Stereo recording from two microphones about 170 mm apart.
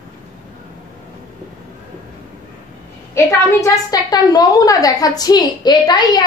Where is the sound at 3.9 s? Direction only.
20° left (ahead or behind).